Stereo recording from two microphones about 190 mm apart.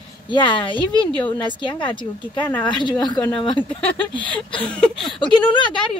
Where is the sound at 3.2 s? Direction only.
10° left (ahead or behind).